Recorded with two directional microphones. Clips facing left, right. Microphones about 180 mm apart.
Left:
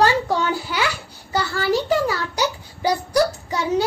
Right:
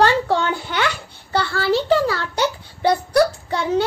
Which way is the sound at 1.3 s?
10° left (ahead or behind).